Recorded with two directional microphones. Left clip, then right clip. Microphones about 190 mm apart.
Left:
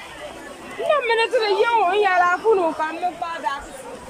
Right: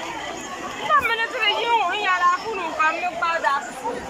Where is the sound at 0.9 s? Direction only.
55° left (ahead or behind).